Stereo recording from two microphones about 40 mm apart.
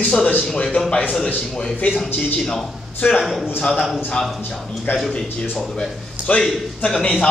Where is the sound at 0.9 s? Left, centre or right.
Left.